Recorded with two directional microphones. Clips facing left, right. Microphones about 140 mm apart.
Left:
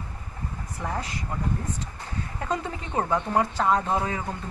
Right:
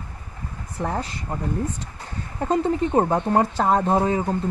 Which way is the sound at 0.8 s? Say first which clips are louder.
Right 5 dB; 35° right (ahead or behind).